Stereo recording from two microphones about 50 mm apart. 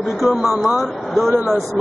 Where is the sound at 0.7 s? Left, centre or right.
Centre.